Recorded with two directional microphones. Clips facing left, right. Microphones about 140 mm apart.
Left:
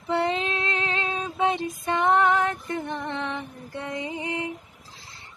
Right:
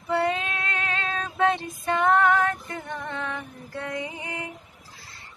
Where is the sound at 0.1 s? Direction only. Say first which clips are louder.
Even; 25° left (ahead or behind).